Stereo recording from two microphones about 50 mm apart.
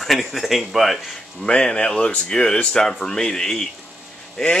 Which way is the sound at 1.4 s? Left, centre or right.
Centre.